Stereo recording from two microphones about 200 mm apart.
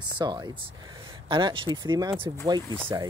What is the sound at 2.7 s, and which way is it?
Speech, 10° right (ahead or behind).